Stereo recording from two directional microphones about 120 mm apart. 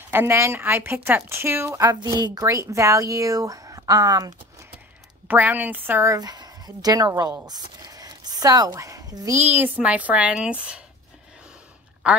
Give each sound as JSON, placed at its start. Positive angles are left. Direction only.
{"t": 0.1, "sound": "a woman's voice", "side_deg": -20}
{"t": 5.3, "sound": "a woman's voice", "side_deg": -15}
{"t": 6.1, "sound": "speech", "side_deg": -35}
{"t": 7.4, "sound": "a sound", "side_deg": -35}
{"t": 8.7, "sound": "speech", "side_deg": -30}
{"t": 9.4, "sound": "a woman's voice", "side_deg": -15}
{"t": 12.0, "sound": "a woman's voice", "side_deg": -10}